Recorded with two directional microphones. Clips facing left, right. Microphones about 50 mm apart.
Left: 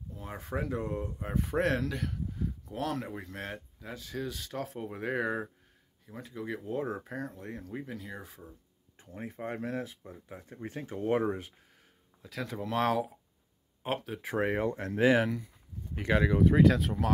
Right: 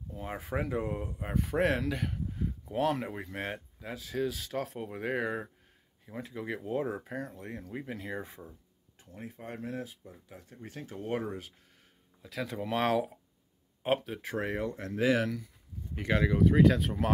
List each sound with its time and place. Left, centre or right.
0.1 s a sound: right
0.4 s speech: centre
6.0 s speech: centre
6.7 s speech: centre
7.9 s speech: right
8.9 s a sound: left
9.3 s speech: left
12.2 s speech: centre
14.3 s speech: left
15.2 s speech: centre